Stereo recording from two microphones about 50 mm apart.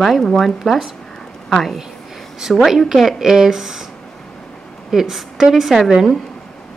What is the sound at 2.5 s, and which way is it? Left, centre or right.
A woman's voice, centre.